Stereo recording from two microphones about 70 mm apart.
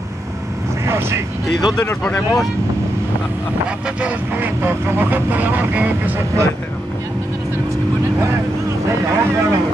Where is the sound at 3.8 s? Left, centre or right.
Centre.